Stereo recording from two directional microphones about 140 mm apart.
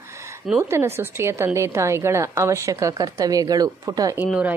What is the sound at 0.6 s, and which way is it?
A woman's voice, 20° right (ahead or behind).